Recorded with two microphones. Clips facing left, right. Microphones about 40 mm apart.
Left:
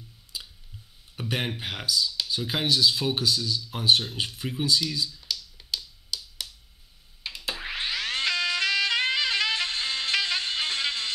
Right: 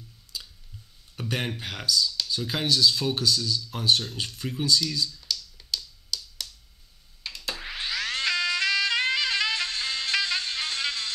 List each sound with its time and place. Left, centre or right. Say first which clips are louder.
0.3 s clicking: even; centre
1.1 s speech: even; centre
7.2 s a sound: left 1 dB; centre
7.6 s boing: left 1 dB; left
8.4 s music: right 1 dB; centre
9.5 s music: left 1 dB; left